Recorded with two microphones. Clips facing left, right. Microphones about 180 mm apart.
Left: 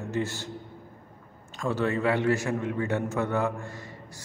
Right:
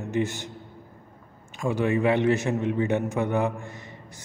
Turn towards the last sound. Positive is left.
turn(degrees=-20)  # may be behind; listen again after turning